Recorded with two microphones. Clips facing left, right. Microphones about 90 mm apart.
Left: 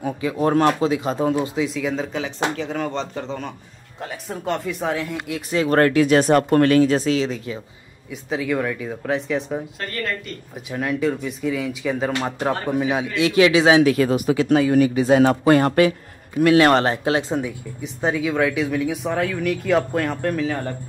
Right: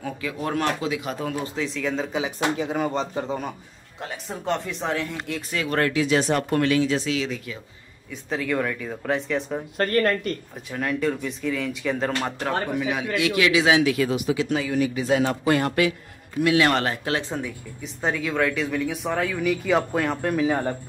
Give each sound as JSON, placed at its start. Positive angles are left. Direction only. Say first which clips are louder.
{"t": 0.0, "sound": "speech", "louder": "left 8 dB", "side_deg": 25}
{"t": 1.4, "sound": "speech", "louder": "left 4 dB", "side_deg": 10}
{"t": 2.5, "sound": "speech", "louder": "even", "side_deg": -5}
{"t": 5.7, "sound": "speech", "louder": "left 6 dB", "side_deg": 45}
{"t": 8.1, "sound": "speech", "louder": "left 3 dB", "side_deg": 5}
{"t": 9.8, "sound": "speech", "louder": "right 6 dB", "side_deg": -50}
{"t": 10.5, "sound": "speech", "louder": "left 8 dB", "side_deg": 5}
{"t": 12.7, "sound": "speech", "louder": "left 4 dB", "side_deg": 30}
{"t": 18.0, "sound": "speech", "louder": "left 3 dB", "side_deg": 5}
{"t": 20.4, "sound": "speech", "louder": "right 2 dB", "side_deg": -15}